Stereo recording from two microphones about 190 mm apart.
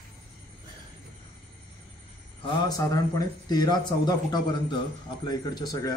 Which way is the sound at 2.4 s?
20° left (ahead or behind).